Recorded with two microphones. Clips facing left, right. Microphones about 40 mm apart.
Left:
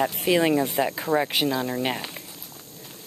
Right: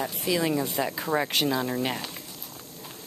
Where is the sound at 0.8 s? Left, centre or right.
Centre.